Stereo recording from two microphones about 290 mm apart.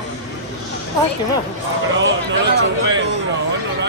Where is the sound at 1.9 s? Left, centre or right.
Right.